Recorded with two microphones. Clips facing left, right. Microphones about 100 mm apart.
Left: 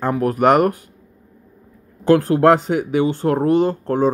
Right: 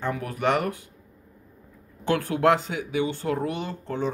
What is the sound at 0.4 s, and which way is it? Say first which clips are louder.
Speech: left 10 dB; 55° left (ahead or behind).